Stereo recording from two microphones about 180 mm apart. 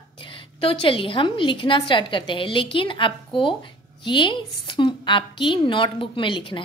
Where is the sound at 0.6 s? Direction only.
30° left (ahead or behind).